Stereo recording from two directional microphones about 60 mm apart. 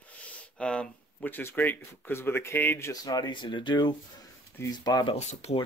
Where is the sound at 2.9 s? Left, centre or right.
Left.